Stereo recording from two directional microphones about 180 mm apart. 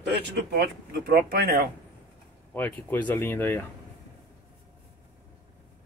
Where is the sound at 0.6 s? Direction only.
65° right (ahead or behind).